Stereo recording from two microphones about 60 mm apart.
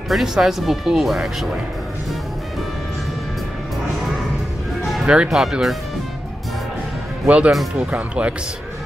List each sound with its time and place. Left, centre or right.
0.1 s speech: centre
5.0 s speech: centre
7.2 s speech: right